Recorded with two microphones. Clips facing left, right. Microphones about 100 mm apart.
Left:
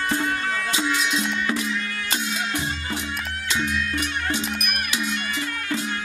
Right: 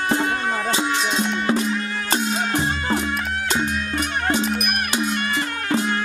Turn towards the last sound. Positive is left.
turn(degrees=-45)  # may be behind; listen again after turning